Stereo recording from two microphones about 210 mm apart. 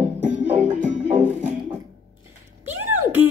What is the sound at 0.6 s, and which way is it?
Music, 35° right (ahead or behind).